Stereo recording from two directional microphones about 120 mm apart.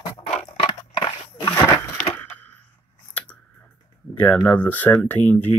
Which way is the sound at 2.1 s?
15° left (ahead or behind).